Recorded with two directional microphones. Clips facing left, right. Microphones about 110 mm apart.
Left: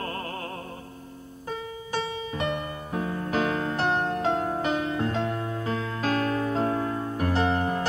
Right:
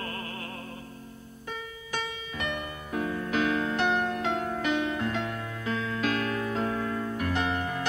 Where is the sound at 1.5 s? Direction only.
35° left (ahead or behind).